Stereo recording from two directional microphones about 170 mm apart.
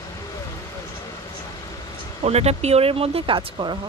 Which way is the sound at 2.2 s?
40° right (ahead or behind).